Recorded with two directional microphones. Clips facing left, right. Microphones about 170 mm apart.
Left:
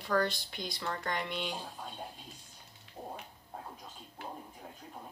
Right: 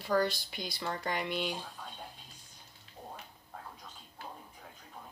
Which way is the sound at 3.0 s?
20° left (ahead or behind).